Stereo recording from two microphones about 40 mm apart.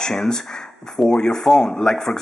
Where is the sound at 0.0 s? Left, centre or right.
Centre.